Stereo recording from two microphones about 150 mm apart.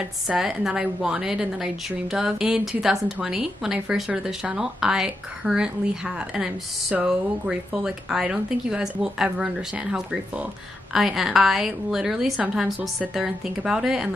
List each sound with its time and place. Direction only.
0.3 s a woman's voice: 5° right (ahead or behind)